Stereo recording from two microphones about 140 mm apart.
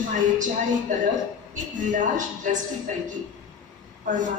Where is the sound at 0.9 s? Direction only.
65° right (ahead or behind).